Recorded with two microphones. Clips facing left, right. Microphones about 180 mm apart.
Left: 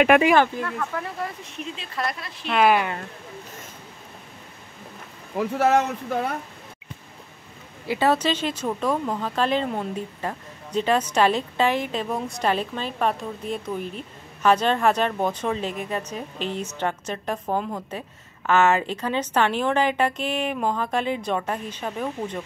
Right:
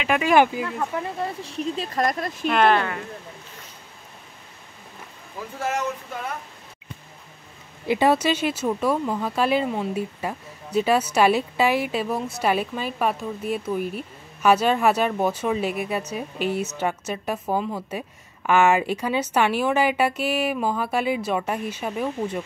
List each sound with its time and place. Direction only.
0.3 s speech: 10° right (ahead or behind)
0.7 s speech: 25° right (ahead or behind); by 2.3 s 45° right (ahead or behind)
2.4 s speech: 5° left (ahead or behind)
5.3 s speech: 70° left (ahead or behind)
7.9 s speech: 15° right (ahead or behind)